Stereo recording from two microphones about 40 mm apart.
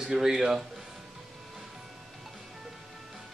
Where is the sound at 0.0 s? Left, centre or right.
Centre.